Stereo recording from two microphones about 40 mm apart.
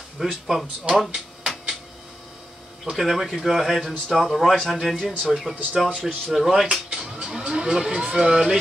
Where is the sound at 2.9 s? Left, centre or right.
Centre.